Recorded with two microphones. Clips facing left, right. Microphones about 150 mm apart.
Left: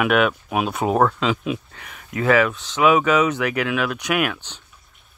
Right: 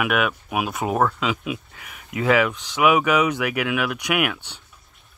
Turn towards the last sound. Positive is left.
turn(degrees=-15)  # may be behind; listen again after turning